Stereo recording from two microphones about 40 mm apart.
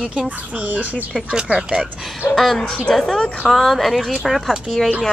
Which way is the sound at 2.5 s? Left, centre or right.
Centre.